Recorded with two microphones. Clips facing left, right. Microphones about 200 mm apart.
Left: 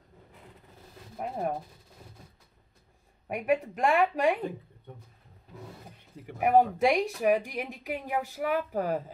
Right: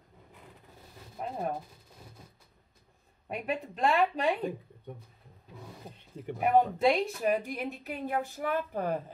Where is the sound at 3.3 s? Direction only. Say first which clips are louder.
Left 7 dB; 10° left (ahead or behind).